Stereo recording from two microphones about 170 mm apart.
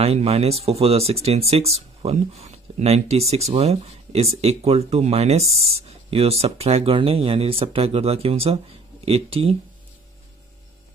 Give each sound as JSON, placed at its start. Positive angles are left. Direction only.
{"t": 0.0, "sound": "speech", "side_deg": -35}